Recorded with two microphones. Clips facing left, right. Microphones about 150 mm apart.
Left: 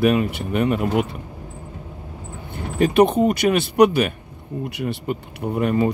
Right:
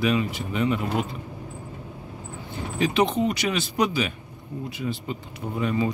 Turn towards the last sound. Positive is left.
turn(degrees=60)  # may be behind; listen again after turning